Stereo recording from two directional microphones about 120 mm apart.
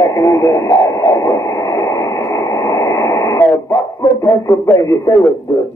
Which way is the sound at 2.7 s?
30° left (ahead or behind).